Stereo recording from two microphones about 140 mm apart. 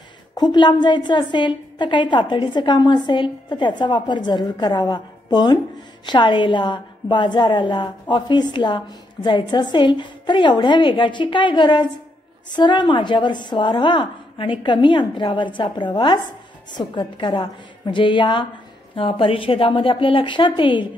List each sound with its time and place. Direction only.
0.4 s a woman's voice: 30° left (ahead or behind)